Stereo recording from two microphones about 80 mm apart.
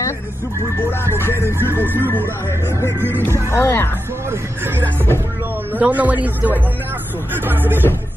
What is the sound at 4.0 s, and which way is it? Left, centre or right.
Speech, right.